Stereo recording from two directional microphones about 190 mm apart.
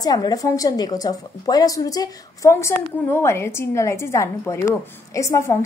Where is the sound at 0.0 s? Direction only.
20° left (ahead or behind).